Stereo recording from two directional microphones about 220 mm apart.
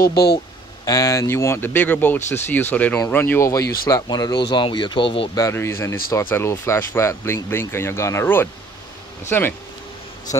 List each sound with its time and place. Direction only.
0.0 s speech: 45° left (ahead or behind)
0.8 s speech: 15° left (ahead or behind)